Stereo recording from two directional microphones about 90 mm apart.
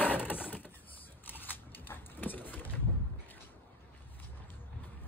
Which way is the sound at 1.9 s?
20° left (ahead or behind).